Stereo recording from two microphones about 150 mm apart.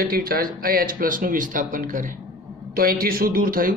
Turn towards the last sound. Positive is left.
turn(degrees=-70)  # may be behind; listen again after turning